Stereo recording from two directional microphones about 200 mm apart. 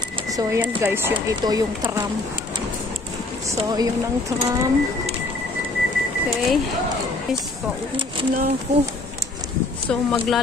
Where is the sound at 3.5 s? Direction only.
20° right (ahead or behind).